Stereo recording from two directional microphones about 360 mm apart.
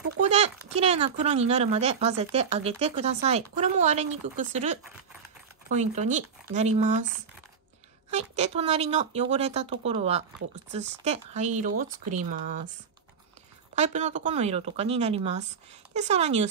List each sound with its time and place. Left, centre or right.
0.2 s speech: centre
8.1 s speech: centre
13.7 s speech: centre